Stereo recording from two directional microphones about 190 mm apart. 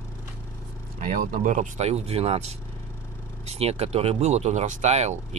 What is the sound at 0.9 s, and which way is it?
Speech, 40° right (ahead or behind).